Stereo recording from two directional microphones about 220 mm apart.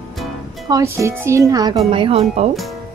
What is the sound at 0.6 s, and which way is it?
Speech, 15° right (ahead or behind).